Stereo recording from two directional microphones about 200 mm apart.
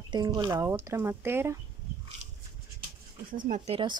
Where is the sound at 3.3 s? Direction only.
40° right (ahead or behind).